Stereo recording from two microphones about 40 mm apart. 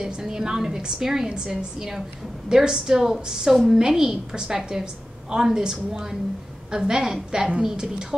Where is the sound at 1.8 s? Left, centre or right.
Centre.